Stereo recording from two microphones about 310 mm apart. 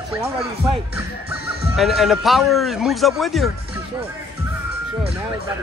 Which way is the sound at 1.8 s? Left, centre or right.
Centre.